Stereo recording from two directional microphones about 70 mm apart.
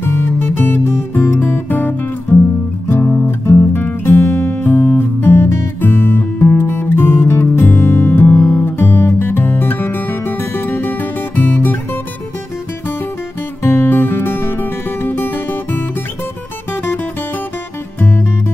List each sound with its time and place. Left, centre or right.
0.0 s music: left
13.6 s music: left